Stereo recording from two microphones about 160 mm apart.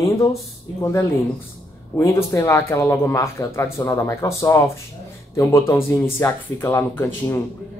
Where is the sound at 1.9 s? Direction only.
15° left (ahead or behind).